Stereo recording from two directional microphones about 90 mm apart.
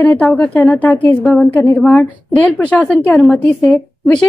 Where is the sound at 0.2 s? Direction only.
Centre (ahead or behind).